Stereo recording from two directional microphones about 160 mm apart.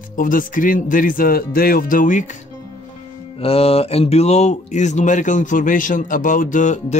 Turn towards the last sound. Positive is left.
turn(degrees=50)  # may be behind; listen again after turning